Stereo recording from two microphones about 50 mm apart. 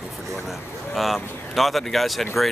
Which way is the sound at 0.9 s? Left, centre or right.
Centre.